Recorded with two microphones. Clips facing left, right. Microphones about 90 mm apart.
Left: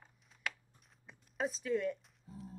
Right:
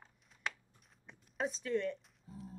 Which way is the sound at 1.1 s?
Centre (ahead or behind).